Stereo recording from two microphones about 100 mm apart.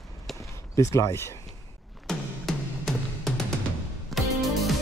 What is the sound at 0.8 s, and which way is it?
Speech, 30° left (ahead or behind).